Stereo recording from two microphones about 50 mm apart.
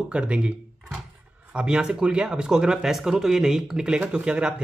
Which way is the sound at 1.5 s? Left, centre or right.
Centre.